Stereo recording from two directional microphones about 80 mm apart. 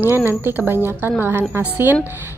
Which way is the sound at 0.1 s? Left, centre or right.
Right.